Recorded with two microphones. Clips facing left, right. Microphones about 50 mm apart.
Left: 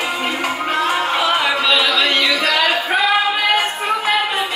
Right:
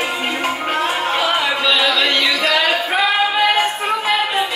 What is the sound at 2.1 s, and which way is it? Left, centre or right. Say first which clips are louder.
Music: left 1 dB; centre.